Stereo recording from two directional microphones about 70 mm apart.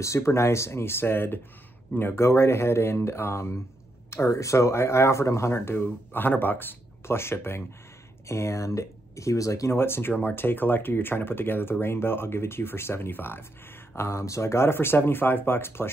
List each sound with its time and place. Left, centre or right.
0.0 s speech: left
9.8 s speech: left
13.9 s speech: left